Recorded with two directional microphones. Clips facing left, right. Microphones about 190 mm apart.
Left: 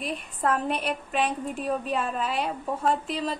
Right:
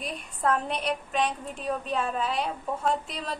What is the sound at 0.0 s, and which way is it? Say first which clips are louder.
A woman's voice: left 1 dB; centre (ahead or behind).